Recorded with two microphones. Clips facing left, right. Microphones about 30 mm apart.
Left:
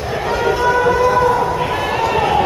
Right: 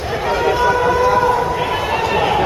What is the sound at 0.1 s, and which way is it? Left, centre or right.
Run, centre.